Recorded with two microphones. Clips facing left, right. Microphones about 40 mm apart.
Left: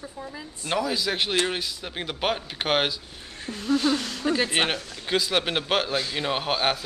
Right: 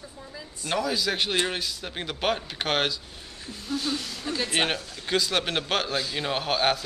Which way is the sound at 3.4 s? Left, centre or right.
Left.